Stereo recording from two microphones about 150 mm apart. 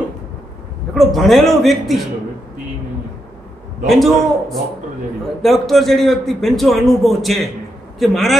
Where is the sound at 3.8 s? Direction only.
Centre (ahead or behind).